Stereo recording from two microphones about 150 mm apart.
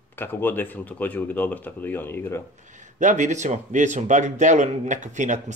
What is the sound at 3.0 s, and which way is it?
A man's voice, 55° right (ahead or behind).